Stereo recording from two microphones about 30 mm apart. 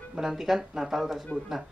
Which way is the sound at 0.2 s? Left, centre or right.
Centre.